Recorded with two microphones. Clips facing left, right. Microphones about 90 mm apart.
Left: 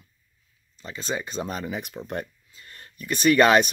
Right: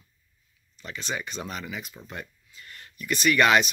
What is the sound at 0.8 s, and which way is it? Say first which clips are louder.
Speech: left 3 dB; 30° left (ahead or behind).